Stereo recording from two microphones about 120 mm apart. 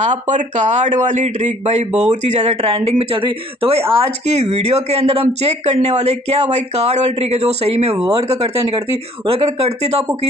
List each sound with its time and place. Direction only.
0.0 s a man's voice: 85° right
2.6 s speech: 50° right (ahead or behind)